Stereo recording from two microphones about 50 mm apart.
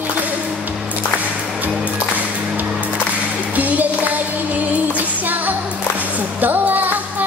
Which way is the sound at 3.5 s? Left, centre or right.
Right.